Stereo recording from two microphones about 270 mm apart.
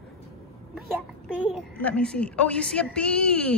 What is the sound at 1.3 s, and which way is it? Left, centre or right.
A woman's voice, centre.